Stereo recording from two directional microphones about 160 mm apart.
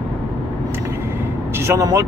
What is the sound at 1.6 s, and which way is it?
Speech, 20° right (ahead or behind).